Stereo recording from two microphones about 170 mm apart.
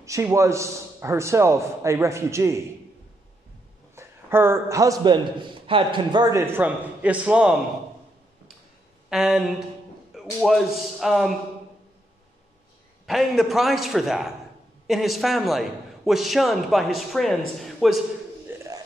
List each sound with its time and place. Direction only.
0.0 s a man's voice: 15° right (ahead or behind)
3.9 s a man's voice: 15° right (ahead or behind)
6.3 s a man's voice: 15° right (ahead or behind)
9.1 s a man's voice: 5° right (ahead or behind)
13.0 s a man's voice: centre (ahead or behind)
18.5 s a sound: 15° right (ahead or behind)